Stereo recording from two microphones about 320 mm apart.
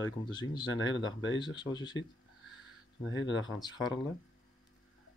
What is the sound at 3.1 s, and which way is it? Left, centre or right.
Speech, left.